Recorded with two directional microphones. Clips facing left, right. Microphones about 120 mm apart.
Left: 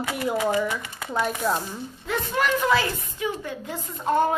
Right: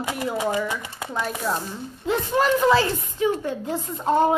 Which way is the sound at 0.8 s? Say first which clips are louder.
Right 2 dB; 20° right (ahead or behind).